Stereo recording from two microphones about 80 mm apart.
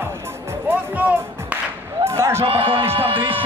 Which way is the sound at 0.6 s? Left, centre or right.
Right.